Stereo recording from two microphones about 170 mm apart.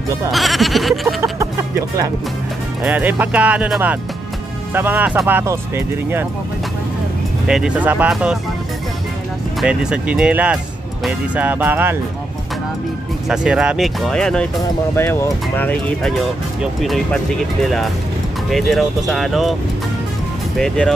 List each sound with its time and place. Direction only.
0.3 s speech: centre (ahead or behind)
1.4 s music: 15° right (ahead or behind)
2.8 s speech: 10° right (ahead or behind)
7.4 s speech: 5° right (ahead or behind)
9.6 s speech: 5° right (ahead or behind)
13.3 s speech: 5° right (ahead or behind)
18.5 s speech: centre (ahead or behind)
20.5 s speech: 5° left (ahead or behind)